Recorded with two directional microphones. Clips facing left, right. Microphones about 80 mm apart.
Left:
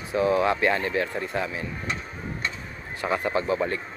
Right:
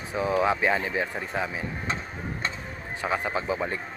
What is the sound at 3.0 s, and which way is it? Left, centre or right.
Speech, centre.